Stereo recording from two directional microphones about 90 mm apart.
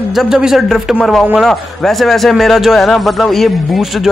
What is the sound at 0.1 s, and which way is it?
A man's voice, 5° right (ahead or behind).